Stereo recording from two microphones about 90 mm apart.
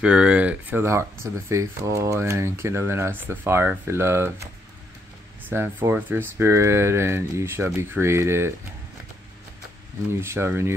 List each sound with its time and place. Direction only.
0.0 s speech: 10° right (ahead or behind)
1.2 s speech: 35° right (ahead or behind)
5.5 s speech: 25° right (ahead or behind)
10.2 s speech: 30° right (ahead or behind)